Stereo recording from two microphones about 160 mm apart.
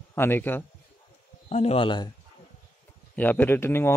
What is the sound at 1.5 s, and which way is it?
Speech, 40° left (ahead or behind).